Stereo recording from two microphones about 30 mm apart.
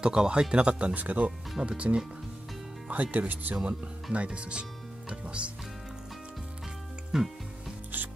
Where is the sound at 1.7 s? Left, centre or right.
Right.